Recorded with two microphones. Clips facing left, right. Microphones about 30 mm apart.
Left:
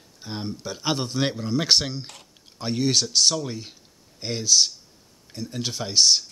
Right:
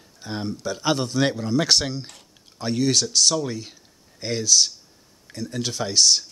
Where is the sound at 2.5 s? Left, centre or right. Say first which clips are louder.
Right 1 dB; left.